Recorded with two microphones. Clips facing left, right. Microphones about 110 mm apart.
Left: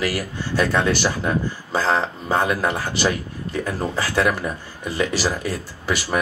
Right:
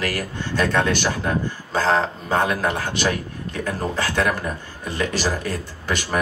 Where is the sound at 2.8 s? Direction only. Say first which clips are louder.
Left 1 dB; 55° right (ahead or behind).